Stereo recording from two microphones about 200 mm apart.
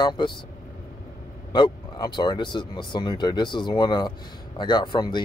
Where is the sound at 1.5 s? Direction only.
20° left (ahead or behind).